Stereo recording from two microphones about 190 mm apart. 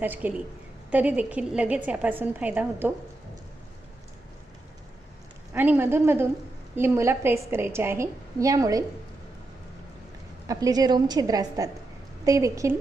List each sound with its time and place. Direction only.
0.0 s a woman's voice: 10° right (ahead or behind)
5.5 s a woman's voice: 10° right (ahead or behind)
10.5 s a woman's voice: 20° right (ahead or behind)